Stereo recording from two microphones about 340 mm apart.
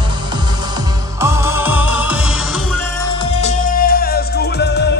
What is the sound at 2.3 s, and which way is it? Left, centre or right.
Music, left.